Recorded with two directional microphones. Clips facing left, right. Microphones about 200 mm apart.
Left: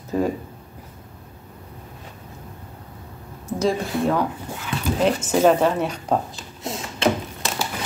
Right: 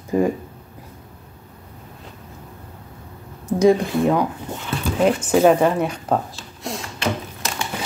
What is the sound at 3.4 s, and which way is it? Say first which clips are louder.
Speech: right 7 dB; 15° right (ahead or behind).